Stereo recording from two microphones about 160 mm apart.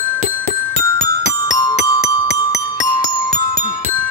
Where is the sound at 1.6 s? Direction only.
25° left (ahead or behind).